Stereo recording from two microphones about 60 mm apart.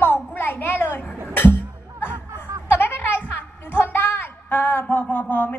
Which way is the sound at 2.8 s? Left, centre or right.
Left.